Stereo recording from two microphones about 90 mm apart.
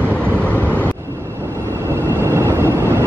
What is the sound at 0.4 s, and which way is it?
Vehicle, 20° left (ahead or behind).